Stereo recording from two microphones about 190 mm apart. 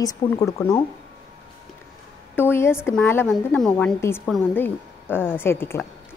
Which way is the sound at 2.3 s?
10° left (ahead or behind).